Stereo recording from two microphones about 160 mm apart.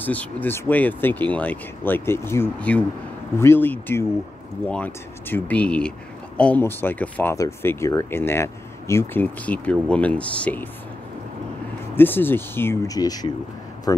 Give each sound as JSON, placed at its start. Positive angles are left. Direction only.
{"t": 0.0, "sound": "speech", "side_deg": 10}
{"t": 12.0, "sound": "speech", "side_deg": 15}